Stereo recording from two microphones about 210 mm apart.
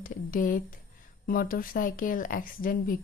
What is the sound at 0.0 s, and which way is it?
A woman's voice, 40° left (ahead or behind).